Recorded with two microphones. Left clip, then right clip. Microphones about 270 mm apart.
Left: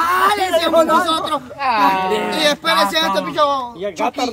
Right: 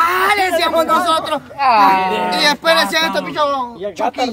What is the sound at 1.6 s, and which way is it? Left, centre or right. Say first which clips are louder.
Speech: right 5 dB; right.